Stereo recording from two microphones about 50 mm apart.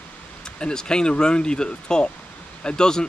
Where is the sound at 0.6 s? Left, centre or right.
Centre.